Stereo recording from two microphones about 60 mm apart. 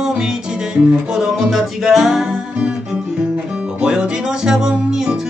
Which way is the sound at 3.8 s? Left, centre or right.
Centre.